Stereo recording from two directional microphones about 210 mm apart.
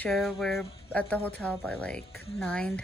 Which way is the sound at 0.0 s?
Centre (ahead or behind).